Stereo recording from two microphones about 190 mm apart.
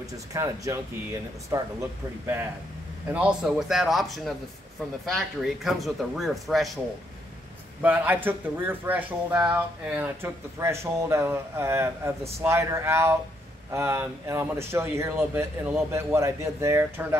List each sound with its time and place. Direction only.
0.3 s speech: 15° right (ahead or behind); by 6.8 s centre (ahead or behind)
7.8 s speech: 10° right (ahead or behind)